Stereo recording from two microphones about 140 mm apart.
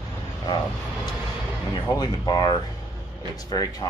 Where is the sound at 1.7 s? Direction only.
30° left (ahead or behind).